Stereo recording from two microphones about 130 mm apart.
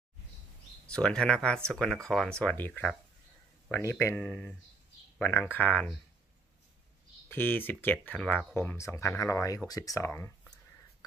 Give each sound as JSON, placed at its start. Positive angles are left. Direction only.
{"t": 0.8, "sound": "speech", "side_deg": 10}
{"t": 4.2, "sound": "speech", "side_deg": 5}
{"t": 7.2, "sound": "speech", "side_deg": 15}